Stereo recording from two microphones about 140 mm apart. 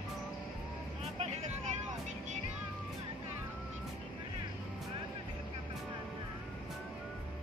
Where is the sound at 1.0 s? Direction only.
50° right (ahead or behind).